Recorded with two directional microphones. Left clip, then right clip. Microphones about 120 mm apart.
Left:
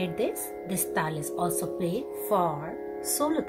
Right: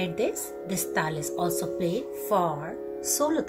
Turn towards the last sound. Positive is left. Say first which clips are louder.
# right 2 dB
turn(degrees=-5)  # may be behind; listen again after turning